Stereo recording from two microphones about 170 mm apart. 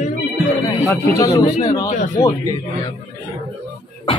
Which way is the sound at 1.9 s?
45° left (ahead or behind).